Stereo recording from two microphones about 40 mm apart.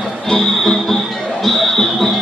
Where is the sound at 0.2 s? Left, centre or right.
Centre.